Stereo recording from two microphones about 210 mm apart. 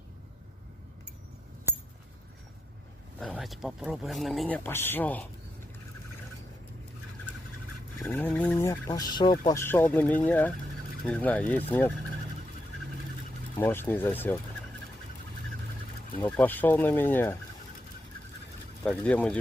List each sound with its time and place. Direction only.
3.2 s speech: centre (ahead or behind)
8.0 s speech: 10° left (ahead or behind)
13.6 s speech: 10° left (ahead or behind)
16.3 s speech: 10° left (ahead or behind)
18.9 s speech: 5° left (ahead or behind)